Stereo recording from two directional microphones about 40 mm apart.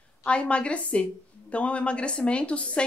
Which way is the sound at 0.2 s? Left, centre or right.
Left.